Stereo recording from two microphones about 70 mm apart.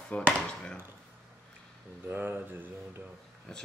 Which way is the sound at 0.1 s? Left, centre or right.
Left.